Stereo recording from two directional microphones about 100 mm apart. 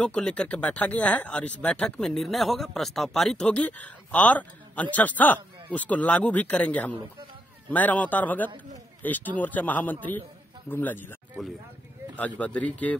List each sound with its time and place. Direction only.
0.0 s speech: 10° left (ahead or behind)
12.2 s speech: 15° left (ahead or behind)